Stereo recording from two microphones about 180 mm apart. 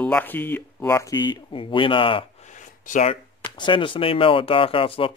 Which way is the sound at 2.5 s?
45° left (ahead or behind).